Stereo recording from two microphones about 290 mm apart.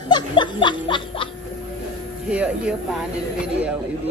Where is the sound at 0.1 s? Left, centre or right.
Centre.